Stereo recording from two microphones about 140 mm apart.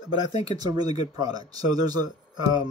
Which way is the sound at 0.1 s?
30° right (ahead or behind).